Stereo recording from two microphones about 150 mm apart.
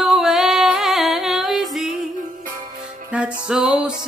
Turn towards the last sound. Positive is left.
turn(degrees=-5)  # may be behind; listen again after turning